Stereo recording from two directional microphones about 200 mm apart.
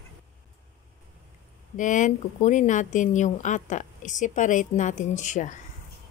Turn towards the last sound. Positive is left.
turn(degrees=35)  # may be behind; listen again after turning